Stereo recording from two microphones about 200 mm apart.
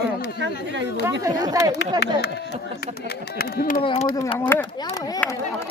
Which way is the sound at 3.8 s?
25° left (ahead or behind).